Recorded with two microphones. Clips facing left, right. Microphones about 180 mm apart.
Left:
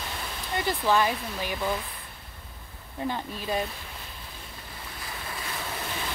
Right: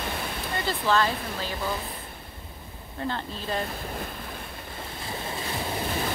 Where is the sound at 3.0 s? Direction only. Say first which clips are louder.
Even; 10° left (ahead or behind).